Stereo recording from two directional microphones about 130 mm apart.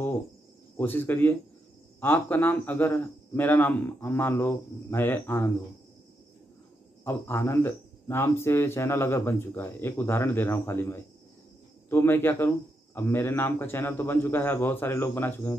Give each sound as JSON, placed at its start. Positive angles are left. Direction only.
{"t": 0.7, "sound": "a man's voice", "side_deg": 15}
{"t": 7.1, "sound": "a man's voice", "side_deg": 20}